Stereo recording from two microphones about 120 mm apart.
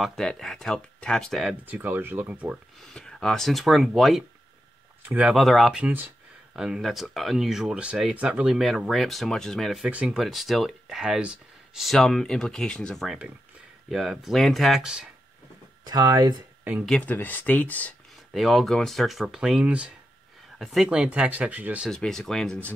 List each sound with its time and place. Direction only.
0.0 s speech: 5° left (ahead or behind)
1.7 s speech: 15° right (ahead or behind)
2.8 s speech: 5° left (ahead or behind)
5.0 s speech: 10° right (ahead or behind)
5.4 s speech: centre (ahead or behind)
5.8 s speech: 15° right (ahead or behind)
15.8 s speech: 30° right (ahead or behind)
16.8 s speech: 10° left (ahead or behind)
18.3 s speech: centre (ahead or behind)
21.9 s speech: 5° left (ahead or behind)